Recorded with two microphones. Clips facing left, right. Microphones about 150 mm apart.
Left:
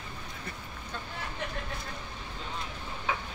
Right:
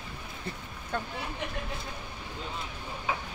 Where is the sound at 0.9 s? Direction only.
55° right (ahead or behind).